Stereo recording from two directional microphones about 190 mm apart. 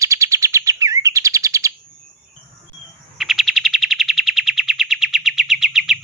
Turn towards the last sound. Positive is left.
turn(degrees=0)  # may be behind; listen again after turning